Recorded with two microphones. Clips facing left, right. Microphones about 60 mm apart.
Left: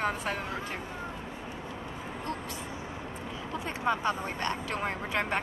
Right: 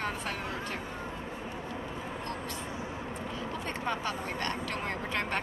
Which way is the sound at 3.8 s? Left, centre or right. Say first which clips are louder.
Left 6 dB; centre.